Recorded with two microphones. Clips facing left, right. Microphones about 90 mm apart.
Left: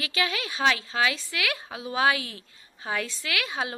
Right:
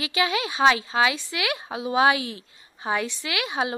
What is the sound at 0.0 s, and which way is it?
A woman's voice, 20° right (ahead or behind).